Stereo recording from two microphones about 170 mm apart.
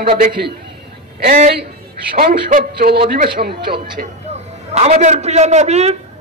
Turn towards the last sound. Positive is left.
turn(degrees=-40)  # may be behind; listen again after turning